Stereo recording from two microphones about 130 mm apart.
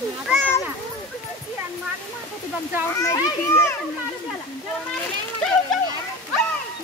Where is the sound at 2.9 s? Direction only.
20° left (ahead or behind).